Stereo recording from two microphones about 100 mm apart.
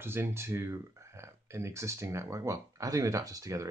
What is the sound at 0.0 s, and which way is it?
Speech, 25° right (ahead or behind).